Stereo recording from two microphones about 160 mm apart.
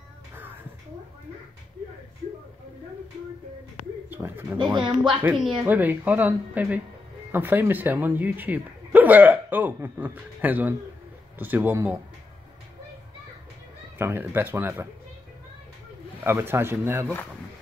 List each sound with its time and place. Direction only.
4.1 s speech: 15° right (ahead or behind)
4.6 s speech: 30° right (ahead or behind)
5.2 s speech: 5° right (ahead or behind)
13.9 s speech: 15° right (ahead or behind)
16.3 s speech: 15° right (ahead or behind)